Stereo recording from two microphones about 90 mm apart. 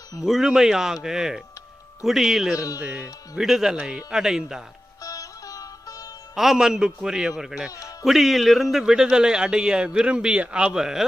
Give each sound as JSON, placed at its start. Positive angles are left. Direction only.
{"t": 0.2, "sound": "a man's voice", "side_deg": -5}
{"t": 5.0, "sound": "music", "side_deg": 40}
{"t": 6.3, "sound": "a man's voice", "side_deg": -5}